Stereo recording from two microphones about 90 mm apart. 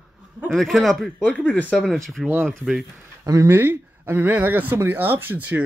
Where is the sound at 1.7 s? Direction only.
Centre (ahead or behind).